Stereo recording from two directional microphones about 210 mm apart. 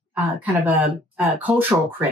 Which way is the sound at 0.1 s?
10° right (ahead or behind).